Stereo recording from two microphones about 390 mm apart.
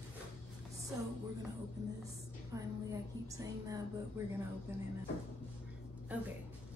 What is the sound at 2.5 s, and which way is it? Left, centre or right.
A woman's voice, centre.